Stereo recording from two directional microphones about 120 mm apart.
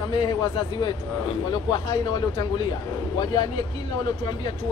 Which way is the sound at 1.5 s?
35° left (ahead or behind).